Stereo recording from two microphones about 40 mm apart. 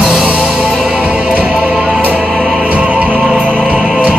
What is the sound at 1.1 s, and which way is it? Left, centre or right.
Music, right.